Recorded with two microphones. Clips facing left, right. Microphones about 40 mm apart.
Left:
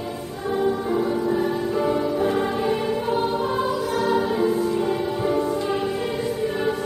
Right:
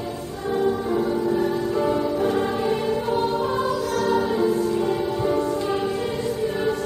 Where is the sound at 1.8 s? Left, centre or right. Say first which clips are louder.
Left 1 dB; centre.